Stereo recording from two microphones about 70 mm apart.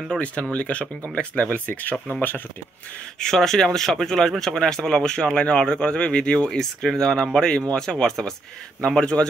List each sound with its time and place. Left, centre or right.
0.1 s speech: centre
3.2 s speech: centre